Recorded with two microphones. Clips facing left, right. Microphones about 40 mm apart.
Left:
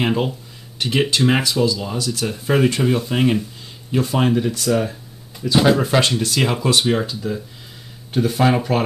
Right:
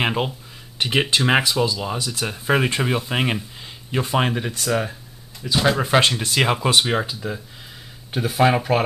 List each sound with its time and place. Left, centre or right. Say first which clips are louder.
0.0 s speech: left 2 dB; centre
5.8 s speech: even; centre